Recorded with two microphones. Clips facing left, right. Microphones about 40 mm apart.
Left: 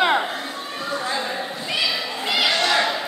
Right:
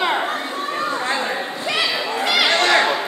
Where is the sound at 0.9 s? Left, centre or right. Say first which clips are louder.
Even; right.